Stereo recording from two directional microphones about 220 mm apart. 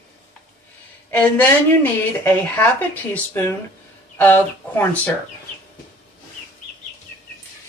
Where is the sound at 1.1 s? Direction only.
10° left (ahead or behind).